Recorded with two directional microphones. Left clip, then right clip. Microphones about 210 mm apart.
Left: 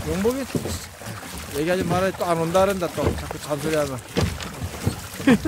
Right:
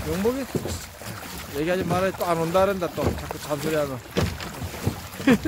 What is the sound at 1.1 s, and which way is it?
Boat, 25° right (ahead or behind).